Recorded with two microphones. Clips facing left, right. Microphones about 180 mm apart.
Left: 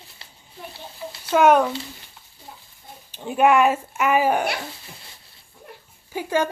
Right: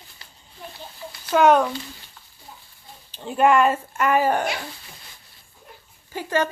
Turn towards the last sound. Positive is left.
turn(degrees=10)  # may be behind; listen again after turning